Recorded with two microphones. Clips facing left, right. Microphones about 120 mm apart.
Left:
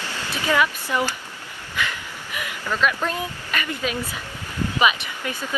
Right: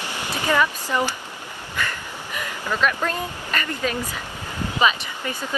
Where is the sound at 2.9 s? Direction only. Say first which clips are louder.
Even; 10° left (ahead or behind).